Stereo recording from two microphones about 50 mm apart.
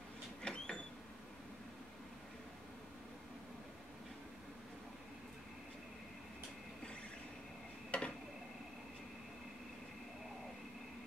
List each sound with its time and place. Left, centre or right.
0.4 s vehicle: centre
7.9 s tick-tock: left